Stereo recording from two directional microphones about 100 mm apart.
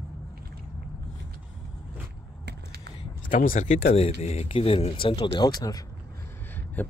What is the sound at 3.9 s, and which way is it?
Speech, 90° left.